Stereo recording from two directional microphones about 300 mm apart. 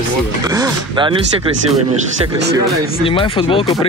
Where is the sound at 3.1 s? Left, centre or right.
Centre.